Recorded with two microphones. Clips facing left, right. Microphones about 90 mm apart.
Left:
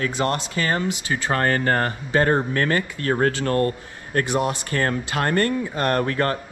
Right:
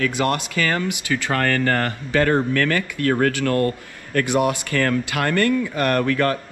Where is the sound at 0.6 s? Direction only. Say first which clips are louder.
Right 1 dB; 25° left (ahead or behind).